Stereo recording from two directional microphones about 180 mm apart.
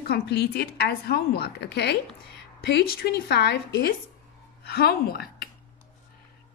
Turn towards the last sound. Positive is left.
turn(degrees=60)  # may be behind; listen again after turning